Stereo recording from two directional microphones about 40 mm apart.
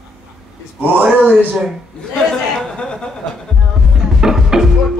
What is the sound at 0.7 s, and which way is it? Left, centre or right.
Speech, right.